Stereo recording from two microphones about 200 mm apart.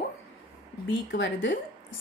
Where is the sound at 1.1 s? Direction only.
65° left (ahead or behind).